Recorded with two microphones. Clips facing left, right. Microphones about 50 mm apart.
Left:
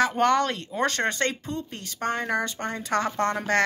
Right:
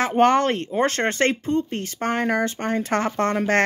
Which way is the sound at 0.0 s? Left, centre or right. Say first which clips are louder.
Right 4 dB; right.